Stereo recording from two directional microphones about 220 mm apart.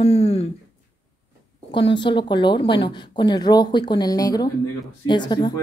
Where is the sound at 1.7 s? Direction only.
20° left (ahead or behind).